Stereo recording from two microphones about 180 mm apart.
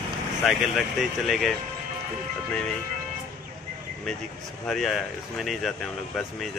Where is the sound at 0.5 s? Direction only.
Centre (ahead or behind).